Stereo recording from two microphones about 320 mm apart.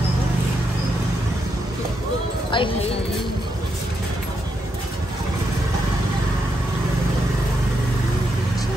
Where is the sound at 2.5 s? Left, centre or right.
Centre.